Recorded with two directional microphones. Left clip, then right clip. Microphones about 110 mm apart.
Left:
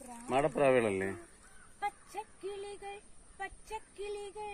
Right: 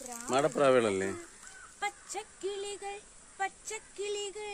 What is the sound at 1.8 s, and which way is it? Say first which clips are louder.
Speech: right 2 dB; 10° left (ahead or behind).